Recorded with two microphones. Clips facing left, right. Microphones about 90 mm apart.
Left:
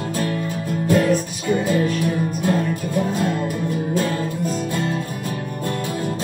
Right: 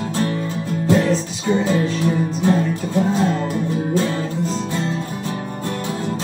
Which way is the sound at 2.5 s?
50° left (ahead or behind).